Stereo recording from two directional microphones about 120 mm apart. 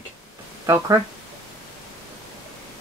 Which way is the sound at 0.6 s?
25° right (ahead or behind).